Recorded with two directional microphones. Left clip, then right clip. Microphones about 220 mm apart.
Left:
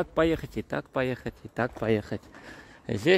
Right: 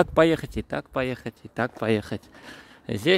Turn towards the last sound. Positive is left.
turn(degrees=-10)  # may be behind; listen again after turning